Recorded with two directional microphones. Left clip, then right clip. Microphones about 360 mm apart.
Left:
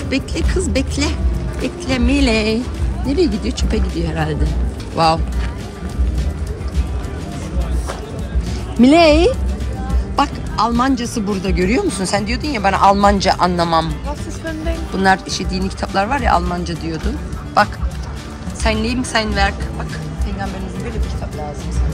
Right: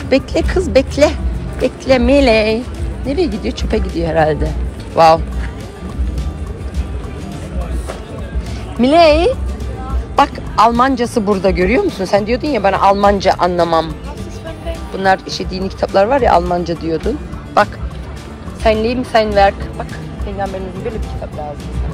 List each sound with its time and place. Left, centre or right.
0.1 s speech: centre
8.8 s speech: centre
18.6 s speech: centre